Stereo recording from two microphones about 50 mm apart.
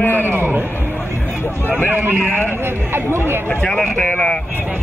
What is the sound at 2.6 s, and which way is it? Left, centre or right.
Speech, right.